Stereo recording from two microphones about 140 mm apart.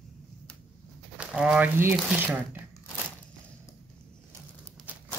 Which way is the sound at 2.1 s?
15° right (ahead or behind).